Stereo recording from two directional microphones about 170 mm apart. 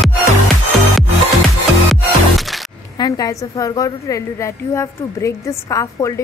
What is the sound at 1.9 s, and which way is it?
Music, centre (ahead or behind).